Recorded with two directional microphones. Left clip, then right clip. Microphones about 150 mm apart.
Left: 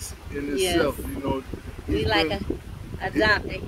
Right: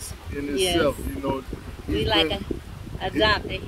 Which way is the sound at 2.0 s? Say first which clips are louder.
Right 1 dB; 30° left (ahead or behind).